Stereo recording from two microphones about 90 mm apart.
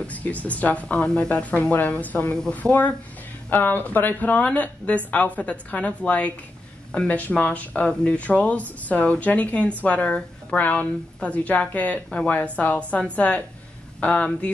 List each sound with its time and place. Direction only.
0.0 s speech: 15° left (ahead or behind)